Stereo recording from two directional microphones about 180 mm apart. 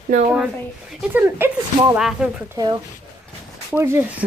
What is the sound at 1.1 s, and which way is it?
Speech, 10° right (ahead or behind).